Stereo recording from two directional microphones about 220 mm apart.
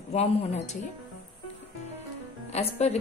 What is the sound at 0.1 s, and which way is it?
Speech, 30° left (ahead or behind).